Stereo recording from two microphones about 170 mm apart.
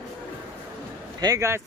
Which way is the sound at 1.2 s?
20° right (ahead or behind).